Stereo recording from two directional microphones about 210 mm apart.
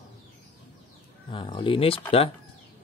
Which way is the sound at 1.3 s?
25° left (ahead or behind).